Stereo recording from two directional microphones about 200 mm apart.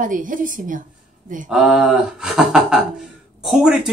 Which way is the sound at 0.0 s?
40° right (ahead or behind).